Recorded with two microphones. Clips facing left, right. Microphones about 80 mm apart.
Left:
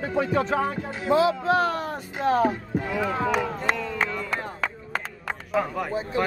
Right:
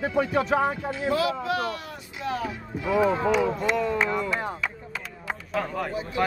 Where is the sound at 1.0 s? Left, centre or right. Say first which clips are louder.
Left 5 dB; left.